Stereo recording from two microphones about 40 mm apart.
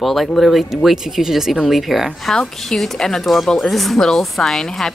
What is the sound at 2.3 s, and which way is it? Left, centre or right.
A woman's voice, centre.